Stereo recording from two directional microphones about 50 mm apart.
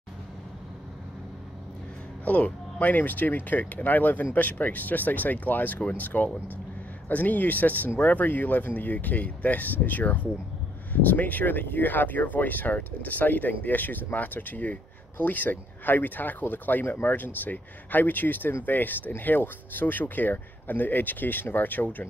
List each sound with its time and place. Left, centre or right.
2.2 s speech: left